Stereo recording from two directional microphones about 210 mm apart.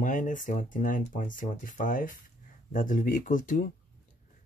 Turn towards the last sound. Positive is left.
turn(degrees=40)  # may be behind; listen again after turning